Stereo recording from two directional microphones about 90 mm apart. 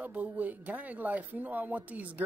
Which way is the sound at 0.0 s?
20° right (ahead or behind).